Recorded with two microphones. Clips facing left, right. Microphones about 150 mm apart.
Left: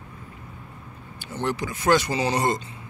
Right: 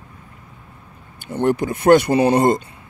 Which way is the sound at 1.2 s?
55° right (ahead or behind).